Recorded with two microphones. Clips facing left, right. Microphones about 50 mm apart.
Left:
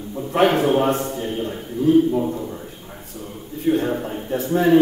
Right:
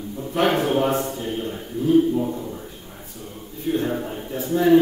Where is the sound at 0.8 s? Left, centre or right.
Centre.